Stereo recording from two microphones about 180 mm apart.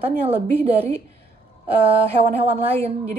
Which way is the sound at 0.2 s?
35° right (ahead or behind).